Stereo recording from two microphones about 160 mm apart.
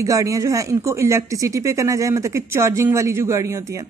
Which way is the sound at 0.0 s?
20° right (ahead or behind).